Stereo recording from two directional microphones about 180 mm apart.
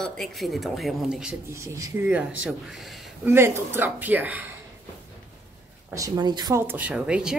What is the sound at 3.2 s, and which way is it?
Speech, 15° right (ahead or behind).